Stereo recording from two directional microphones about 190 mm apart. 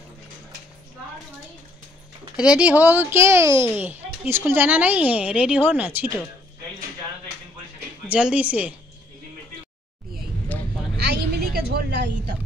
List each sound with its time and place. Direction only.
2.3 s speech: 5° right (ahead or behind)
8.1 s speech: 5° right (ahead or behind)
10.5 s vehicle: 10° left (ahead or behind)
11.0 s a sound: 60° right (ahead or behind)